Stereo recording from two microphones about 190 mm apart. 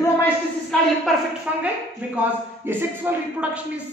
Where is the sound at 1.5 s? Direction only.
5° right (ahead or behind).